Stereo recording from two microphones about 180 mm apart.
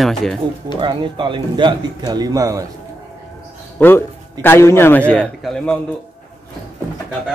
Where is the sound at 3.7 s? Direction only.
10° left (ahead or behind).